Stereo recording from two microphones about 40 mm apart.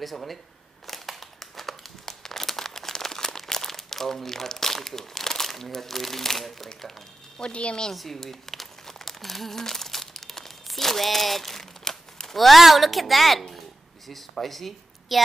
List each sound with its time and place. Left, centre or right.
0.0 s speech: centre
0.8 s crumpling: centre
7.3 s speech: left
7.9 s crumpling: centre
11.8 s speech: centre